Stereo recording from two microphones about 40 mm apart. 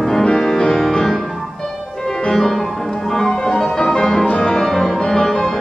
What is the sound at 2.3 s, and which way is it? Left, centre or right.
Music, centre.